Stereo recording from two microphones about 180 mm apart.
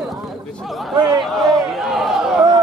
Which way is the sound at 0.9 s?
25° right (ahead or behind).